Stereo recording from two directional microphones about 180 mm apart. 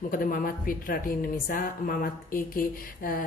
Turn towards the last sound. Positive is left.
turn(degrees=50)  # may be behind; listen again after turning